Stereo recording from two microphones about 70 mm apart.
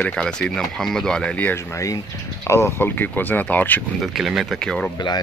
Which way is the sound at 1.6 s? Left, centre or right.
Left.